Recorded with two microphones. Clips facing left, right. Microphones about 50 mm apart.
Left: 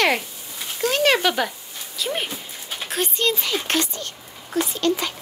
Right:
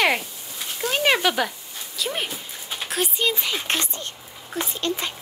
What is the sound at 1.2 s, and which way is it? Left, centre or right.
Speech, centre.